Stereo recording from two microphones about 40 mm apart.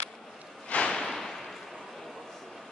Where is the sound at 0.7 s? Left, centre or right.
Left.